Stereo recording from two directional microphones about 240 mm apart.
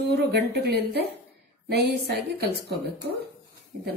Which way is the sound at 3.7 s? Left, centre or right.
Right.